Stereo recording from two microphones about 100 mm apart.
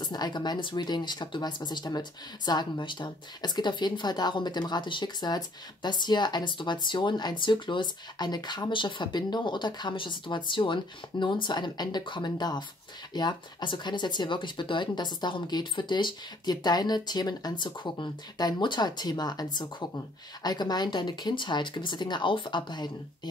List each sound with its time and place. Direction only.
0.0 s speech: 45° left (ahead or behind)